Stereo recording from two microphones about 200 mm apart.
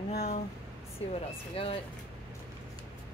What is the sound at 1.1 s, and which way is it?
Speech, 30° left (ahead or behind).